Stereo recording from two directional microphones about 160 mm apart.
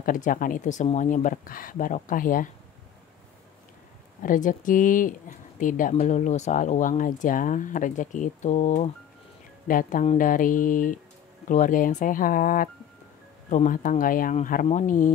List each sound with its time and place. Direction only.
0.0 s speech: 55° left (ahead or behind)
4.2 s speech: 55° left (ahead or behind)
9.7 s speech: 55° left (ahead or behind)